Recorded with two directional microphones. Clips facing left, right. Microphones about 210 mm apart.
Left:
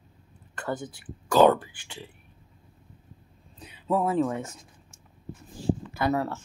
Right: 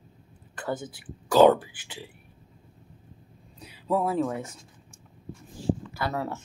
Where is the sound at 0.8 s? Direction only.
5° right (ahead or behind).